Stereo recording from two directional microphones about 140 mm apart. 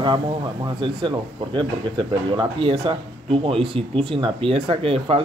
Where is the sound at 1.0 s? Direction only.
35° right (ahead or behind).